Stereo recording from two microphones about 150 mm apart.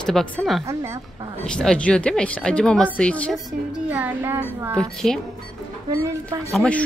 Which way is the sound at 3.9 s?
15° right (ahead or behind).